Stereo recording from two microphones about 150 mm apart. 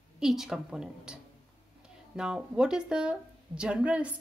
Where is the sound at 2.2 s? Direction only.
5° right (ahead or behind).